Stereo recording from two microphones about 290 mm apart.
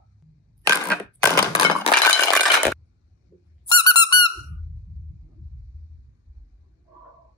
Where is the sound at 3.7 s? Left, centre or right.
Centre.